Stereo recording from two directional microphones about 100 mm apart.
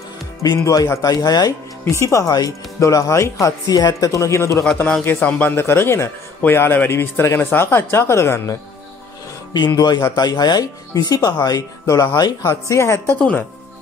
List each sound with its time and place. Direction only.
0.4 s speech: 35° left (ahead or behind)
1.9 s speech: 30° left (ahead or behind)
5.0 s a man's voice: 20° left (ahead or behind)
9.8 s a man's voice: 40° left (ahead or behind)
13.1 s speech: 15° left (ahead or behind)